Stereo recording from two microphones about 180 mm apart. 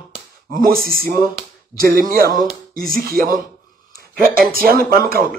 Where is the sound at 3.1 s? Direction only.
50° right (ahead or behind).